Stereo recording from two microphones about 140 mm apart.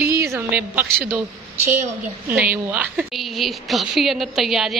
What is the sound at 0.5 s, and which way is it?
Speech, 10° right (ahead or behind).